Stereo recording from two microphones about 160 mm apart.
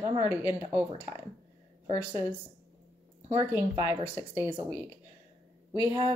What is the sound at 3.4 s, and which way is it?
A woman's voice, 15° right (ahead or behind).